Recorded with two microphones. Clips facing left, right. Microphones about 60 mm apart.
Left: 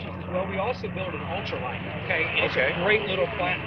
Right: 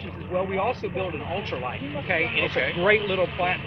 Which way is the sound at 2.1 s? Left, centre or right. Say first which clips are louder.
Even; centre.